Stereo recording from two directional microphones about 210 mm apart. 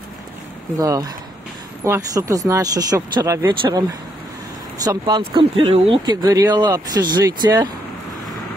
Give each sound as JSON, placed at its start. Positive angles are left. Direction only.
{"t": 0.7, "sound": "speech", "side_deg": -15}
{"t": 4.8, "sound": "speech", "side_deg": -20}